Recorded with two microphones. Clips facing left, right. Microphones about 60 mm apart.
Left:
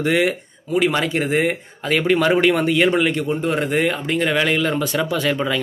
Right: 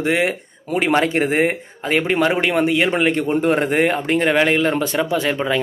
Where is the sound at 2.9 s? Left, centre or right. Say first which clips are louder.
Right 2 dB; right.